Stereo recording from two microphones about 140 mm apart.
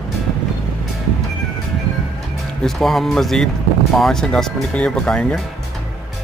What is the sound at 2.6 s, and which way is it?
Speech, centre (ahead or behind).